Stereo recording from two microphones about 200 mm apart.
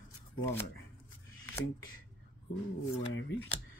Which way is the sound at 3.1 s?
65° left (ahead or behind).